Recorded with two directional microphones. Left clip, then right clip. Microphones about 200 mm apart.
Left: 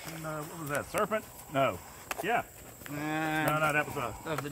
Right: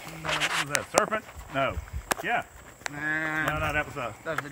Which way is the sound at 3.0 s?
65° left (ahead or behind).